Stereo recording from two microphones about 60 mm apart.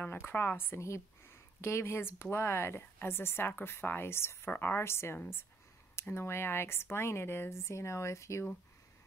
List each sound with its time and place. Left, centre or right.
0.3 s speech: left
0.7 s speech: left